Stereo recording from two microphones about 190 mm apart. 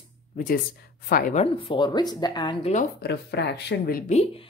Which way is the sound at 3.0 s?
60° left (ahead or behind).